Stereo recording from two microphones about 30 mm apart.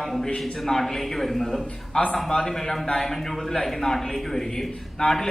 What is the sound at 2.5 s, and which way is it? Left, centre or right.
A man's voice, centre.